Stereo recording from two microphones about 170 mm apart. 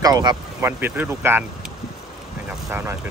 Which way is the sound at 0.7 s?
10° right (ahead or behind).